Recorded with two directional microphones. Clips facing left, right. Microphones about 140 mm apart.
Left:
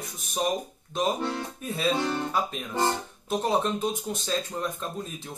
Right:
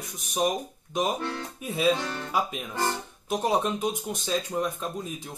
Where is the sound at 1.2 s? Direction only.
20° left (ahead or behind).